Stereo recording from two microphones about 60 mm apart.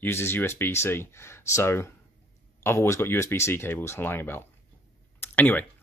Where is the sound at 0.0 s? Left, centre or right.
Left.